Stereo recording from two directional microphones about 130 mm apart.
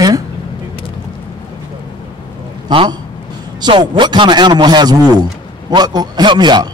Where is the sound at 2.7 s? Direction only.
40° right (ahead or behind).